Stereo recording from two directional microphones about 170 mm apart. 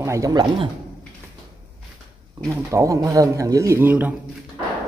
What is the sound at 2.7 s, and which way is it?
Speech, 20° right (ahead or behind).